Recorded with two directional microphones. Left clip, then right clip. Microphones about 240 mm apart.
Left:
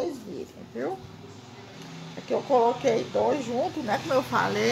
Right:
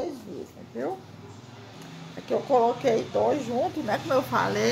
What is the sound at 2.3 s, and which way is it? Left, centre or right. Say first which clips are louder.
Speech: even; centre.